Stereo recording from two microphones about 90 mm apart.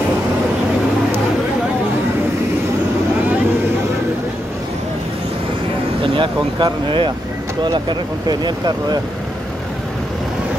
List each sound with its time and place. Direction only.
6.0 s speech: 75° right (ahead or behind)
8.3 s speech: 50° right (ahead or behind)